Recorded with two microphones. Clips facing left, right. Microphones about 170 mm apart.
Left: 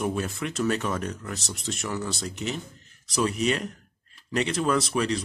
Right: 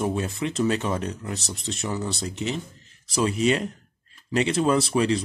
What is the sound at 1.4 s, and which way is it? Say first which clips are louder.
Speech: right 2 dB; centre (ahead or behind).